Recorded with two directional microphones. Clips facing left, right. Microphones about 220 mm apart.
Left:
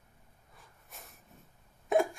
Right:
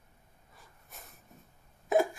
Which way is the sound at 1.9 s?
Centre (ahead or behind).